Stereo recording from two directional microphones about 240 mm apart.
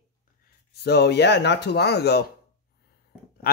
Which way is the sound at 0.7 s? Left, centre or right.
Left.